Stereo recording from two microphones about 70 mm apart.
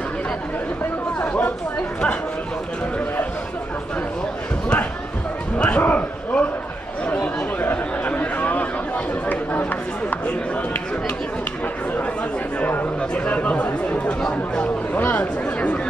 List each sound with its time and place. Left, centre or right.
1.2 s chatter: centre
5.6 s a sound: centre
7.6 s chatter: left
12.5 s speech: left